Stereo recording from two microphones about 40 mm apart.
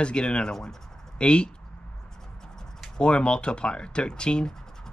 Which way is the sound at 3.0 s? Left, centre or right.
Left.